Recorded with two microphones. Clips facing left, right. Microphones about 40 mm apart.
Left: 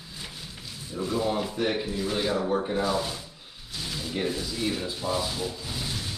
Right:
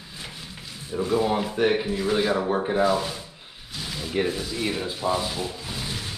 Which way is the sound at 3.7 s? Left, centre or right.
Centre.